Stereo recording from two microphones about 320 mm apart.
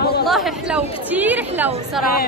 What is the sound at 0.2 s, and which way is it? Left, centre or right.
A woman's voice, centre.